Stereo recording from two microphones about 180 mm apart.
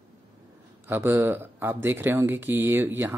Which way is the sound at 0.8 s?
10° right (ahead or behind).